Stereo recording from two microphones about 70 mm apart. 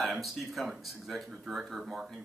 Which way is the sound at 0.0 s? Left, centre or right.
Centre.